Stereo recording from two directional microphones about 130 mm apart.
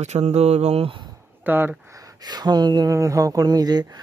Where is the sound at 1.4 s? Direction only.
15° right (ahead or behind).